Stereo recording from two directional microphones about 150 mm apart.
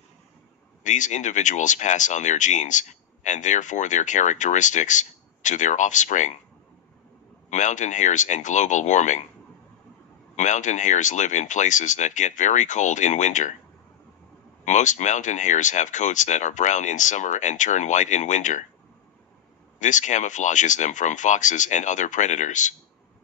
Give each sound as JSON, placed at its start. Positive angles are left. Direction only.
{"t": 0.8, "sound": "speech", "side_deg": 55}
{"t": 7.4, "sound": "speech", "side_deg": 55}
{"t": 10.3, "sound": "speech", "side_deg": 55}
{"t": 14.6, "sound": "speech", "side_deg": 55}
{"t": 19.8, "sound": "speech", "side_deg": 55}